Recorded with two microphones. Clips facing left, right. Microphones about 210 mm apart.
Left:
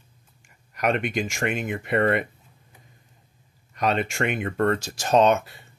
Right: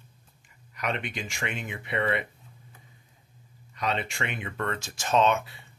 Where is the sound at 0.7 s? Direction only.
45° left (ahead or behind).